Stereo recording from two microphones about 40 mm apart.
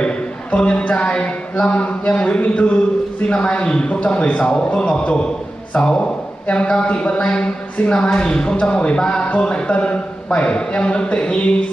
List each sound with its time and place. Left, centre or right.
0.0 s speech: left
2.4 s a sound: left
3.3 s a man's voice: left